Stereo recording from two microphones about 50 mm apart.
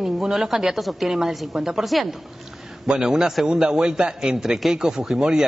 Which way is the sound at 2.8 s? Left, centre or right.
Centre.